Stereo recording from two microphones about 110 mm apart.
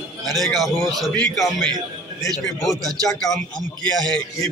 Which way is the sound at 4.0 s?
5° left (ahead or behind).